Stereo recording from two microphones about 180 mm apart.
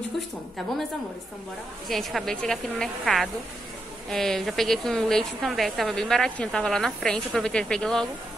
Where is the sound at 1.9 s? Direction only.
Centre (ahead or behind).